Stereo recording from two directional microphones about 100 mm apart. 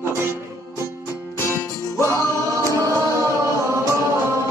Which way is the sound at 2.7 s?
30° right (ahead or behind).